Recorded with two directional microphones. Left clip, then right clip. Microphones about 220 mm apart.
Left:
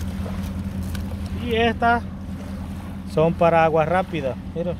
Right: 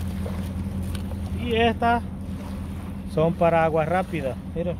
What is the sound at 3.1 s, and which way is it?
Speech, 20° left (ahead or behind).